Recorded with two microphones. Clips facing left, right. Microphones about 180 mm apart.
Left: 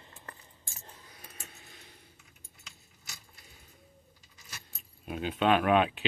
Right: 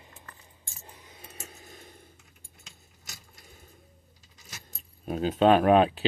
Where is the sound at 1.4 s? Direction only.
45° right (ahead or behind).